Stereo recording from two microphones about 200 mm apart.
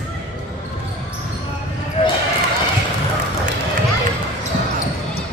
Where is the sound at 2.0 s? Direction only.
30° left (ahead or behind).